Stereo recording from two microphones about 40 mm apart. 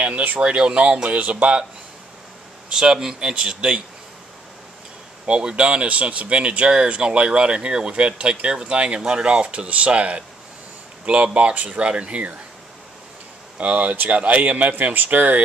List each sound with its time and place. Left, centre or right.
0.0 s a sound: right
0.4 s speech: right
2.7 s speech: centre
5.2 s a man's voice: right
11.8 s a man's voice: right
13.6 s a man's voice: right